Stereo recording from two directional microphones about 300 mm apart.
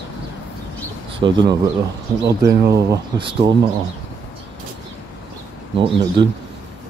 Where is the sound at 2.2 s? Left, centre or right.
Right.